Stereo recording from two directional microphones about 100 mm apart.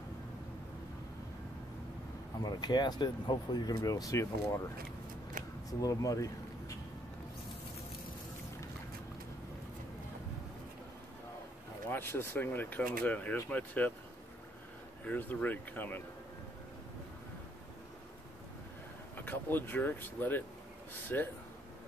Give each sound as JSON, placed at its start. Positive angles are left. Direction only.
{"t": 2.4, "sound": "speech", "side_deg": 45}
{"t": 3.7, "sound": "speech", "side_deg": 35}
{"t": 5.7, "sound": "speech", "side_deg": 35}
{"t": 11.9, "sound": "speech", "side_deg": 25}
{"t": 15.0, "sound": "speech", "side_deg": 15}
{"t": 19.1, "sound": "speech", "side_deg": 20}